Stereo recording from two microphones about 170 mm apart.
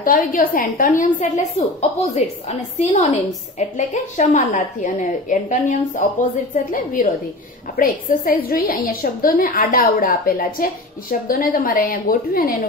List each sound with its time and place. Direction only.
0.0 s a woman's voice: 55° left (ahead or behind)